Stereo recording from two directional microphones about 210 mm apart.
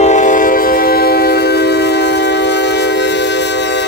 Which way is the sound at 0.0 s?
35° left (ahead or behind).